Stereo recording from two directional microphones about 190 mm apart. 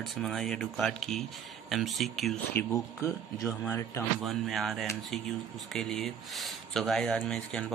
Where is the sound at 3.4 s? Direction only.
15° left (ahead or behind).